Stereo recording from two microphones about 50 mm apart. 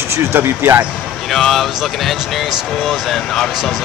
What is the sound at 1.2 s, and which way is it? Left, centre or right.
Speech, centre.